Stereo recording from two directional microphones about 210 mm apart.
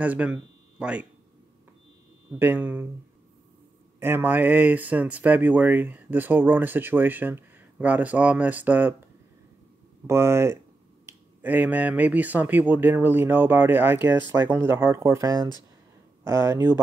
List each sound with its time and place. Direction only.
0.0 s speech: 5° right (ahead or behind)
2.3 s speech: 10° right (ahead or behind)
4.0 s speech: 10° right (ahead or behind)
10.0 s speech: 10° right (ahead or behind)